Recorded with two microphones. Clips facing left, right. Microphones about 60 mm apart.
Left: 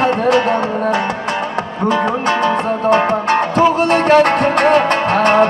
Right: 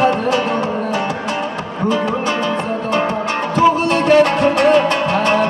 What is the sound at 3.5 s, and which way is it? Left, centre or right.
Music, left.